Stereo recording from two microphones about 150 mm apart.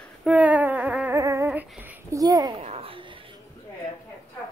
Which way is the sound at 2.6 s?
40° right (ahead or behind).